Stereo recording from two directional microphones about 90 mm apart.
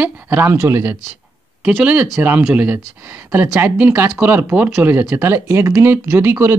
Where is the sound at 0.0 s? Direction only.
25° right (ahead or behind).